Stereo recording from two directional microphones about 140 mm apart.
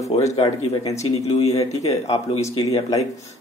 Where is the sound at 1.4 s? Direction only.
45° left (ahead or behind).